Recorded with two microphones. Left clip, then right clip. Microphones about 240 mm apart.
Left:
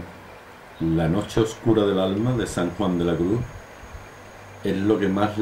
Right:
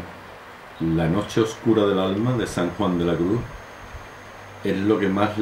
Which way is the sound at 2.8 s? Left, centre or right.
Right.